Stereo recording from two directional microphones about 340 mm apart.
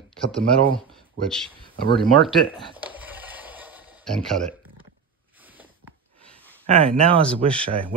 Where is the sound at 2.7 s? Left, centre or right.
Centre.